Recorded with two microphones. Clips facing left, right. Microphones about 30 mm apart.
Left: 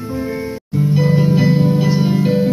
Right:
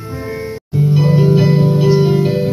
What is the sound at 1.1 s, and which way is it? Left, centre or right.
Music, centre.